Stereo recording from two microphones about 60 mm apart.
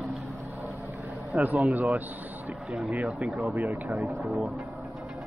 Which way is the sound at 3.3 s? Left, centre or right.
Centre.